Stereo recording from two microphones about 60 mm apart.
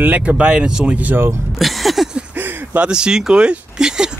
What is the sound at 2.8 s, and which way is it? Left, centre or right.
Speech, centre.